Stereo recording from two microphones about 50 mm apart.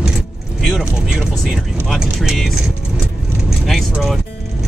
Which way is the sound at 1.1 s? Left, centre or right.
Centre.